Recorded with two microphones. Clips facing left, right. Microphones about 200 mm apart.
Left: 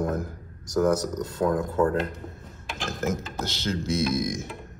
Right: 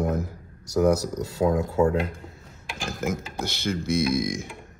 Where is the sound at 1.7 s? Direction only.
10° right (ahead or behind).